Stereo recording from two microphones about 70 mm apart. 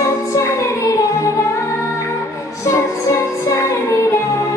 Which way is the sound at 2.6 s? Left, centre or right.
Left.